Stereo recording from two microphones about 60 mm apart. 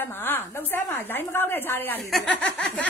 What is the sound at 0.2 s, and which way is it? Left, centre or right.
A woman's voice, left.